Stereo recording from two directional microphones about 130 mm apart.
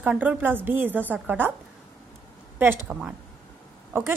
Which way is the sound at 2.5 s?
15° right (ahead or behind).